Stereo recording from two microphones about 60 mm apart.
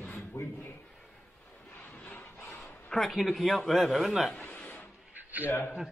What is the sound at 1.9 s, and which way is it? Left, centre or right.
Vehicle, left.